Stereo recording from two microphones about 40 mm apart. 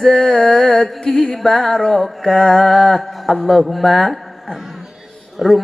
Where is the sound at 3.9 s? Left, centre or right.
Centre.